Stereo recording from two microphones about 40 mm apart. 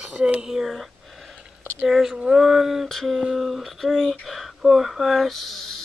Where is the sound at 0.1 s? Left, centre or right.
Right.